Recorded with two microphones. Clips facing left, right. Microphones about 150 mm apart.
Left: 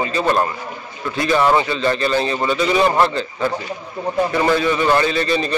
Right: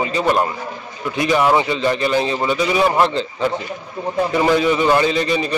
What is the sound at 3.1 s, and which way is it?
A man's voice, 20° right (ahead or behind).